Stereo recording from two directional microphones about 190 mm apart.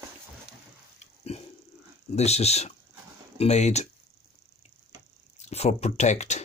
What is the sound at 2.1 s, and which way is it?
Speech, 35° left (ahead or behind).